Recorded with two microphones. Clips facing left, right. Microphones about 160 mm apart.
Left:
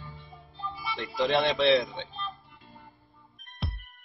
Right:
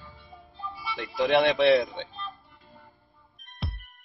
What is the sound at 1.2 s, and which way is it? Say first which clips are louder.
Speech: right 3 dB; 60° right (ahead or behind).